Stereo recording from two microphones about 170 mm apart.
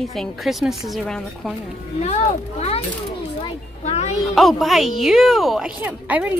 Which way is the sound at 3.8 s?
40° left (ahead or behind).